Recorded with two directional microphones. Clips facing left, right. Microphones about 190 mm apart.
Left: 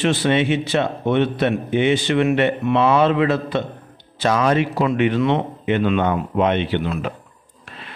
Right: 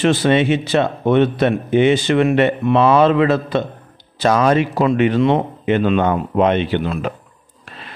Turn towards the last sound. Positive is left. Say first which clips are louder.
# right 2 dB
turn(degrees=-40)  # may be behind; listen again after turning